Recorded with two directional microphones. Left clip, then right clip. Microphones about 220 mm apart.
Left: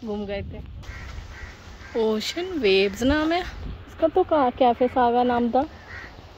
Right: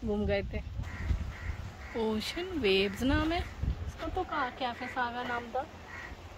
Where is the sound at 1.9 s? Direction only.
5° right (ahead or behind).